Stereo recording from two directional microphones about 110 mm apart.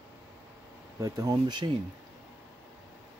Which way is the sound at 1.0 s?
35° right (ahead or behind).